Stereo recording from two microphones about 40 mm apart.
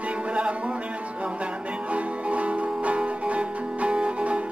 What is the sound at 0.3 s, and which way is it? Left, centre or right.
Music, right.